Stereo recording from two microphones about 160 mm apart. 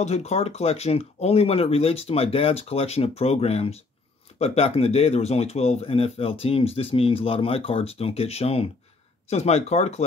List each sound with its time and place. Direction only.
0.0 s speech: 45° left (ahead or behind)